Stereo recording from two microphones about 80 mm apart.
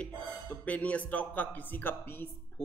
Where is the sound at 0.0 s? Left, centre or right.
Centre.